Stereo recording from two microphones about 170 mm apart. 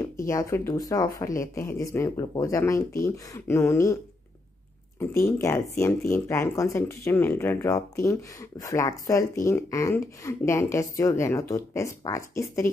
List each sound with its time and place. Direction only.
0.3 s speech: 15° left (ahead or behind)